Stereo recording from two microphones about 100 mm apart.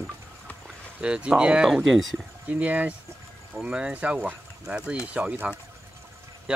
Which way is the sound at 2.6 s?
15° right (ahead or behind).